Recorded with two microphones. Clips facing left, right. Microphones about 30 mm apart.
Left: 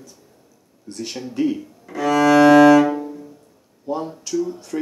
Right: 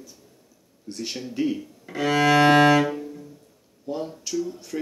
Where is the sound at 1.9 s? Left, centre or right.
Right.